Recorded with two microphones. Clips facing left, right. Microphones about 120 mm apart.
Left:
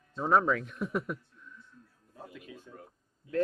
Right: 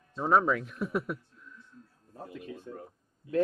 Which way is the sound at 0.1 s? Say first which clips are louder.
Right 1 dB; 5° right (ahead or behind).